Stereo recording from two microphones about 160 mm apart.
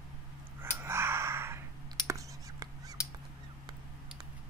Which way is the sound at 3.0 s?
20° left (ahead or behind).